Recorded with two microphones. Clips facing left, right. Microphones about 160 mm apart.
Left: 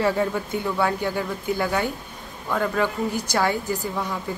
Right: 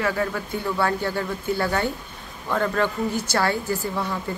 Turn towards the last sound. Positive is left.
turn(degrees=15)  # may be behind; listen again after turning